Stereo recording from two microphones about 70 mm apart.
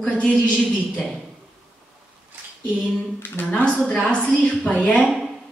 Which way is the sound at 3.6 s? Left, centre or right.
Centre.